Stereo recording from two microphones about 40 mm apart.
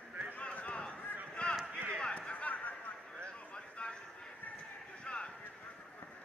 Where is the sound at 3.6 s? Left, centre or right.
Left.